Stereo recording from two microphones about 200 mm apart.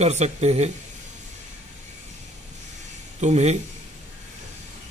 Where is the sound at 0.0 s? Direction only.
35° right (ahead or behind).